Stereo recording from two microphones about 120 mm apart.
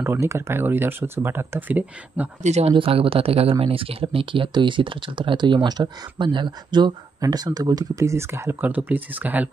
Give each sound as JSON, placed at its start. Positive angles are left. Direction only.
{"t": 0.0, "sound": "speech", "side_deg": -25}
{"t": 2.4, "sound": "speech", "side_deg": -65}
{"t": 2.7, "sound": "speech", "side_deg": -50}